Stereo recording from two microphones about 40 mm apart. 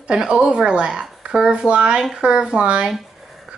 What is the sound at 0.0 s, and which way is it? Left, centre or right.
Speech, right.